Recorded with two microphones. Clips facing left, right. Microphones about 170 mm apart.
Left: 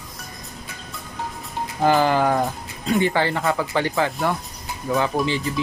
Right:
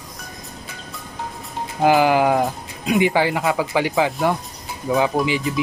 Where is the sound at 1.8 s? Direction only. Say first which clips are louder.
Right 3 dB; 10° right (ahead or behind).